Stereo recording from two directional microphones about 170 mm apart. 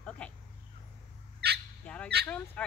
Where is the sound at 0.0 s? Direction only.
5° left (ahead or behind).